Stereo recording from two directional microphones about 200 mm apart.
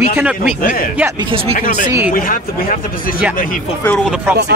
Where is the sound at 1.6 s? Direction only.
40° left (ahead or behind).